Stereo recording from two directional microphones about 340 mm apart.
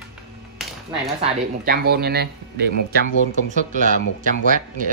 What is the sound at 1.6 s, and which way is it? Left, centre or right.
Speech, right.